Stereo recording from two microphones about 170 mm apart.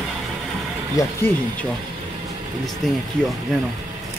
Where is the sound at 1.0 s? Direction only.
20° left (ahead or behind).